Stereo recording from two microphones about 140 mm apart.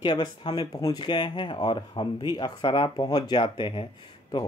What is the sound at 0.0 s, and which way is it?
Speech, 35° left (ahead or behind).